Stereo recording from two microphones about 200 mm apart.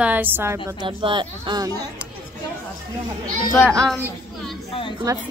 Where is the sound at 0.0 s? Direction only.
10° right (ahead or behind).